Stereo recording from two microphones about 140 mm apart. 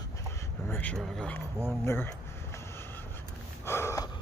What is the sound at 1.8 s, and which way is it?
Speech, 15° left (ahead or behind).